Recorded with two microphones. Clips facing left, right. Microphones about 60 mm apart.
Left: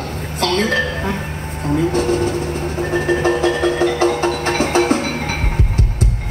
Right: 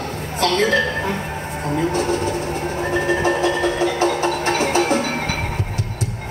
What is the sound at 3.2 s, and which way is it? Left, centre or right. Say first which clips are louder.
Music: left 2 dB; left.